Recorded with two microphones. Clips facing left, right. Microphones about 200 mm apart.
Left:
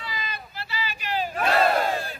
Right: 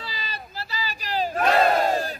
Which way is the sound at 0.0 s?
35° right (ahead or behind).